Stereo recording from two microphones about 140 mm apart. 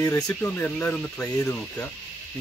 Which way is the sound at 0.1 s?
10° left (ahead or behind).